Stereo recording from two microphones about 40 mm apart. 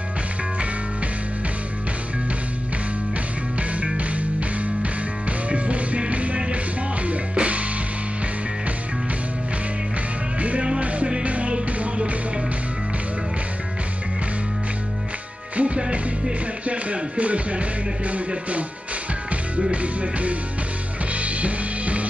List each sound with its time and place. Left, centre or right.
3.8 s music: right
5.5 s music: right
10.8 s music: right
15.5 s music: right
19.7 s music: right